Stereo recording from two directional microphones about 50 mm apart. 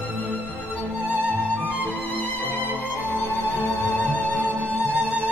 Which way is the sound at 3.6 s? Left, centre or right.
Left.